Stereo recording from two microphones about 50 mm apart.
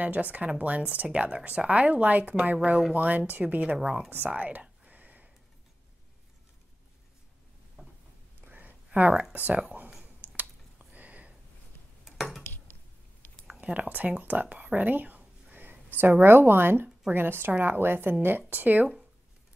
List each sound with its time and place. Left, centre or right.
0.0 s a woman's voice: right
3.7 s a woman's voice: centre
4.1 s a sound: right
7.8 s a sound: right
9.3 s speech: right
10.2 s a sound: right
12.2 s dishes: centre
13.5 s a woman's voice: right
18.5 s speech: right